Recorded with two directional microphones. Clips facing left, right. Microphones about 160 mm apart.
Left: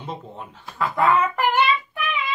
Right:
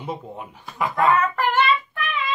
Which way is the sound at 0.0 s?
10° right (ahead or behind).